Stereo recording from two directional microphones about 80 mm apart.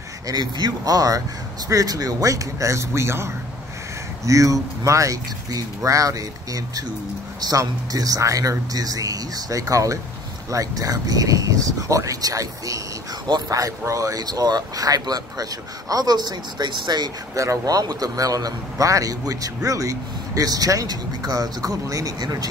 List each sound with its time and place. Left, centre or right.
0.3 s a man's voice: right
4.3 s a man's voice: right
17.4 s a man's voice: right